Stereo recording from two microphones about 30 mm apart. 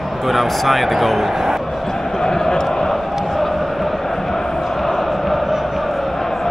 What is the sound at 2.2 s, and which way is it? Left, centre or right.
Speech, centre.